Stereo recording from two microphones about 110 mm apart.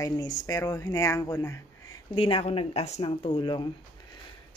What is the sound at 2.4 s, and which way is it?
Speech, 70° left (ahead or behind).